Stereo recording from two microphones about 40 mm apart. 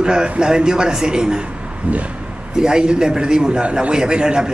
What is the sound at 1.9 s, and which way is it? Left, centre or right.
Speech, right.